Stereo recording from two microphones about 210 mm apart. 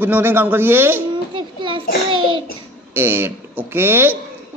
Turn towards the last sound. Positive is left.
turn(degrees=-10)  # may be behind; listen again after turning